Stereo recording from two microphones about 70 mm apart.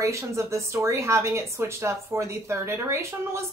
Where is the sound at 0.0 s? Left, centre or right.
Right.